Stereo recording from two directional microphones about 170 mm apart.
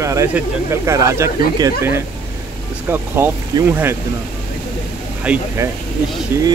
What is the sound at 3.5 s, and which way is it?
Speech, 25° right (ahead or behind).